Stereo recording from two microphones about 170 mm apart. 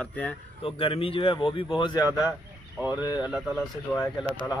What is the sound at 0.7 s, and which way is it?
Speech, 30° left (ahead or behind).